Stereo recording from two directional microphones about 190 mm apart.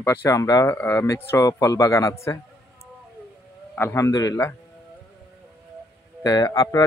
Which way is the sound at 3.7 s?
15° left (ahead or behind).